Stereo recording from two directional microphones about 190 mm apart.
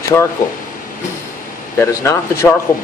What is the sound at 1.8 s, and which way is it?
Speech, 15° left (ahead or behind).